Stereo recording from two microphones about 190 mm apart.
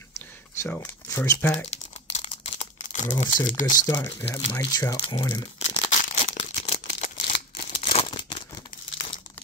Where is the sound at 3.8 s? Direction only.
15° left (ahead or behind).